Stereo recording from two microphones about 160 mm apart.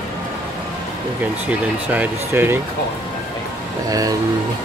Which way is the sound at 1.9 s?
10° right (ahead or behind).